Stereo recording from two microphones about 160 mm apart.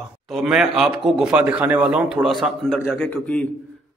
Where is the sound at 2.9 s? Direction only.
10° left (ahead or behind).